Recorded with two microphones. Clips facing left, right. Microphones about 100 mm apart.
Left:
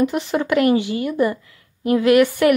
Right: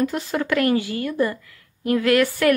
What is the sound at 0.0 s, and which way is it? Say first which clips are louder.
Speech: left 3 dB; 20° left (ahead or behind).